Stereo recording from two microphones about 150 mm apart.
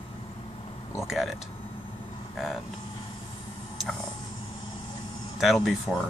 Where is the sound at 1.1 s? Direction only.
Centre (ahead or behind).